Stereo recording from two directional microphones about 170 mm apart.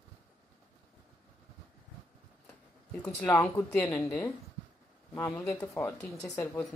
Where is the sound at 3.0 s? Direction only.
10° left (ahead or behind).